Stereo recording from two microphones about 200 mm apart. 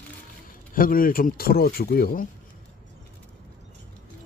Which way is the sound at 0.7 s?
45° left (ahead or behind).